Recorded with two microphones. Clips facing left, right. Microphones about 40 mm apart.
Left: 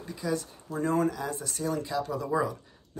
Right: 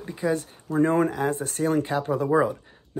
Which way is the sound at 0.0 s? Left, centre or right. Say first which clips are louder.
Right 6 dB; right.